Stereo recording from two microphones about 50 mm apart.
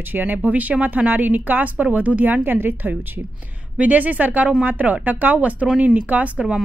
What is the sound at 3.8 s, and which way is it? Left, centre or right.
A woman's voice, right.